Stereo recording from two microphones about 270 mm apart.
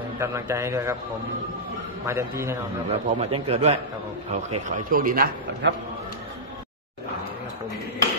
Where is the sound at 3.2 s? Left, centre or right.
Right.